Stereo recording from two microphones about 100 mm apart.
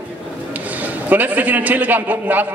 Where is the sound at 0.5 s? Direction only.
15° right (ahead or behind).